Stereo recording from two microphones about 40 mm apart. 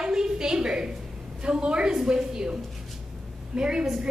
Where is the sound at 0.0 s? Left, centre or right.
Centre.